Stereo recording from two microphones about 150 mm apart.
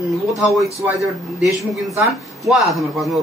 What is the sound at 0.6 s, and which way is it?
Speech, 20° right (ahead or behind).